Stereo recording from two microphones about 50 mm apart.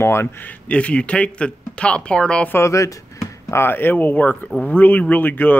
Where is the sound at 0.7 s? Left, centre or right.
Left.